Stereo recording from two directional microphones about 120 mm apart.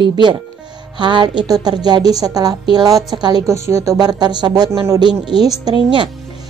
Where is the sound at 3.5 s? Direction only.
25° right (ahead or behind).